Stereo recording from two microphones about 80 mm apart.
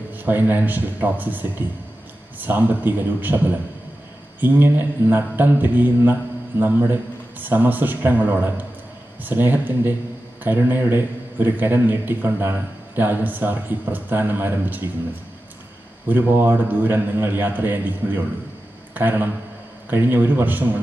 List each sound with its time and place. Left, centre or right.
0.1 s a man's voice: right
16.1 s a man's voice: right